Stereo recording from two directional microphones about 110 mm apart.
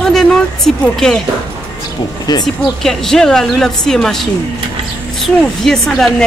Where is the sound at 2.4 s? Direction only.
5° left (ahead or behind).